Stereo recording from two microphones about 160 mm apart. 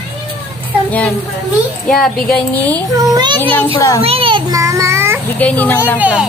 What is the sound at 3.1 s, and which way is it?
A child's voice, 30° right (ahead or behind).